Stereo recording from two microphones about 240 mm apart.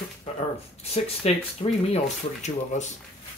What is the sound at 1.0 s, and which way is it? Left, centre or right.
Speech, left.